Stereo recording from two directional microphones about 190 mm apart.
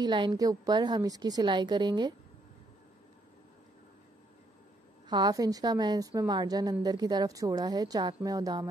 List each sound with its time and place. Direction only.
0.0 s a woman's voice: 25° right (ahead or behind)
5.1 s a woman's voice: 20° right (ahead or behind)